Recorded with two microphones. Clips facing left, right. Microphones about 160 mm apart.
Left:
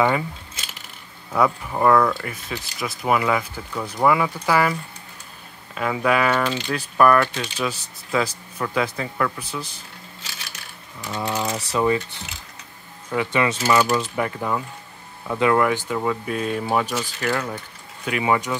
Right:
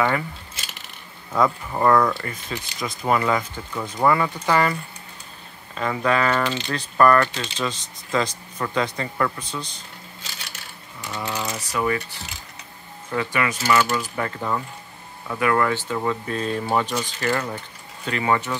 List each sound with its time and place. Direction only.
1.3 s speech: 5° left (ahead or behind)
5.8 s speech: 10° left (ahead or behind)
11.1 s speech: 20° left (ahead or behind)
13.1 s speech: 20° left (ahead or behind)
14.1 s speech: 10° left (ahead or behind)
18.0 s speech: 10° left (ahead or behind)